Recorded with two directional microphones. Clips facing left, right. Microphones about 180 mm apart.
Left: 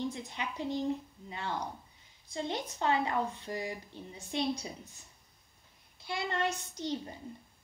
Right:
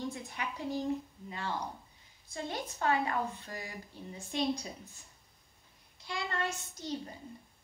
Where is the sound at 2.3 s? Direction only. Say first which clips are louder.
Left 3 dB; 20° left (ahead or behind).